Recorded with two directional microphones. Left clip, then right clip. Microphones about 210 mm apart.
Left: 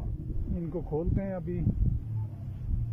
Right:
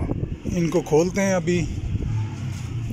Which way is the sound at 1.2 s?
Centre (ahead or behind).